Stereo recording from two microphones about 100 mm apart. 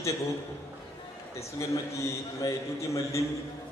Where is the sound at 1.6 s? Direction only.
30° left (ahead or behind).